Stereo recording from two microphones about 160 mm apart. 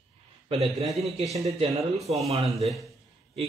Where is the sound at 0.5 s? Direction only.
40° right (ahead or behind).